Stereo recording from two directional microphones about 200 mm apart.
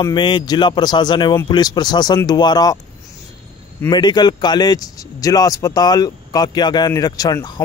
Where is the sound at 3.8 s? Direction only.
20° left (ahead or behind).